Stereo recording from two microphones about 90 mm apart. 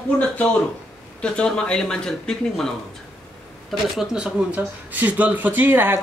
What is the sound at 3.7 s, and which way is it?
Speech, 5° right (ahead or behind).